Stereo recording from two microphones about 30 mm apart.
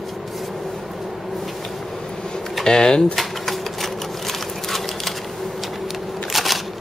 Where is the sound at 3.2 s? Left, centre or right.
Centre.